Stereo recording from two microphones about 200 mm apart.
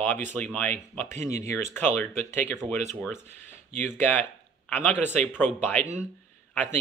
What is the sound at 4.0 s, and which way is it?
Speech, 10° left (ahead or behind).